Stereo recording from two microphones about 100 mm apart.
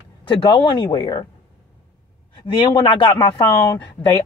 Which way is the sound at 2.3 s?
50° left (ahead or behind).